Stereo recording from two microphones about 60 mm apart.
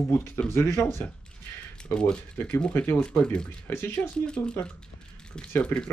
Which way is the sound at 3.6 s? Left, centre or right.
Left.